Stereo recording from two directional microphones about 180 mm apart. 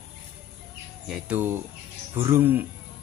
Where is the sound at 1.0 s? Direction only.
5° right (ahead or behind).